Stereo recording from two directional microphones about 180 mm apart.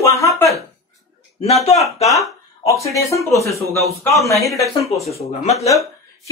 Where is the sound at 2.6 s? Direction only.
15° left (ahead or behind).